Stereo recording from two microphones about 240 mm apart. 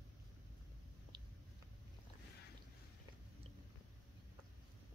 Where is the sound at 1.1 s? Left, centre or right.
Centre.